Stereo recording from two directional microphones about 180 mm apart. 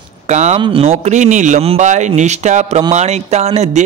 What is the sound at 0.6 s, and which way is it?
A man's voice, 30° right (ahead or behind).